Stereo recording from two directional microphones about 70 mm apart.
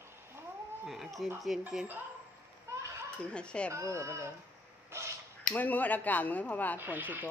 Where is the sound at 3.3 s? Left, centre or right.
Centre.